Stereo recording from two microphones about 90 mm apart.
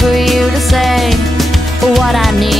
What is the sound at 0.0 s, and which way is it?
Music, centre (ahead or behind).